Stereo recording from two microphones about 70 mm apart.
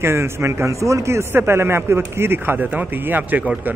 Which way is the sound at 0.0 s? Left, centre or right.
Right.